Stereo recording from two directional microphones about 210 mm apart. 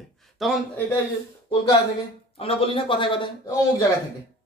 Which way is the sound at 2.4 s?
25° left (ahead or behind).